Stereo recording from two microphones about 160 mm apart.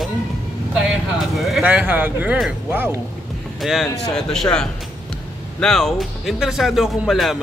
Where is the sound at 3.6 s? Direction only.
Centre (ahead or behind).